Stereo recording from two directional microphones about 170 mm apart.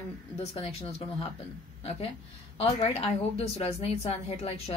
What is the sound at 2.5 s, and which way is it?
Speech, 35° left (ahead or behind).